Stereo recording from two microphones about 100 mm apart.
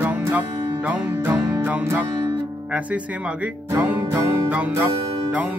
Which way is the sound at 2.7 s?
15° right (ahead or behind).